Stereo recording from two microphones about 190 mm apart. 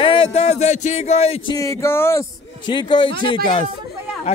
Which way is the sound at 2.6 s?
25° left (ahead or behind).